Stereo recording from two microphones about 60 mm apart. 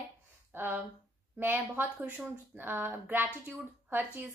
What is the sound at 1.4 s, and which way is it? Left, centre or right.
A woman's voice, right.